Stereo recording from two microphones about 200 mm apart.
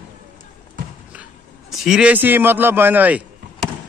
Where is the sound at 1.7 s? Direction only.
Centre (ahead or behind).